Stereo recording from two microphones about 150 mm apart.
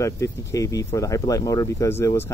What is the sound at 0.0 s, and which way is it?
Speech, 20° left (ahead or behind).